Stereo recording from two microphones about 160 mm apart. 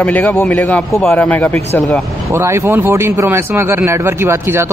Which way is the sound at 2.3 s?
15° right (ahead or behind).